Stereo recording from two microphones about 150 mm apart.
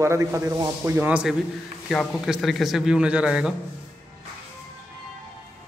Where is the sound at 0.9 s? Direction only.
10° right (ahead or behind).